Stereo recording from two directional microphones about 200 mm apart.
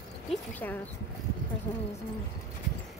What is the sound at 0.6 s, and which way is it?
Speech, 10° left (ahead or behind).